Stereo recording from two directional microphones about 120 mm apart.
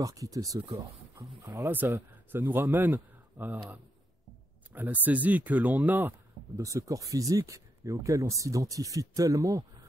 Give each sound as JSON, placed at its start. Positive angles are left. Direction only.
{"t": 0.0, "sound": "speech", "side_deg": -30}